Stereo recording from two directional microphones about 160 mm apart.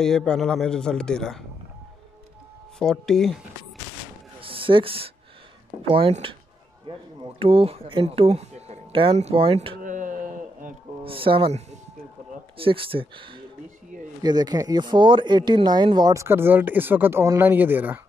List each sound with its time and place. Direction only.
0.0 s speech: 5° left (ahead or behind)
2.8 s speech: 5° left (ahead or behind)
4.4 s a sound: 35° right (ahead or behind)
5.8 s speech: 35° right (ahead or behind)
9.8 s a sound: 55° right (ahead or behind)
11.1 s speech: 35° right (ahead or behind); by 18.0 s 10° right (ahead or behind)